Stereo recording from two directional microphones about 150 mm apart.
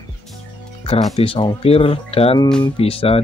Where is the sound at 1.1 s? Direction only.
35° left (ahead or behind).